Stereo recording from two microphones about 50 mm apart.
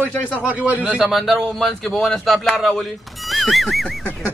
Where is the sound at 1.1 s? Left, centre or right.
Centre.